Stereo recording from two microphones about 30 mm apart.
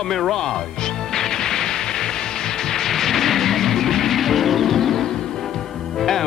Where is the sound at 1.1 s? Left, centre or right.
Centre.